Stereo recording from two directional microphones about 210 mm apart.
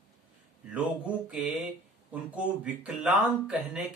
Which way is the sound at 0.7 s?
5° right (ahead or behind).